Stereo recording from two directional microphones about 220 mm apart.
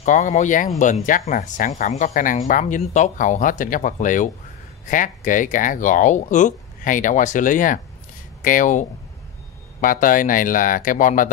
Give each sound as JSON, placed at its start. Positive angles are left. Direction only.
{"t": 0.0, "sound": "speech", "side_deg": 35}